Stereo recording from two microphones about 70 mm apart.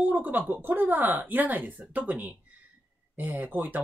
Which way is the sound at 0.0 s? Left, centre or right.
Right.